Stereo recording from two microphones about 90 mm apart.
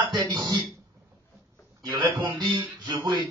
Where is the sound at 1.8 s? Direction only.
55° right (ahead or behind).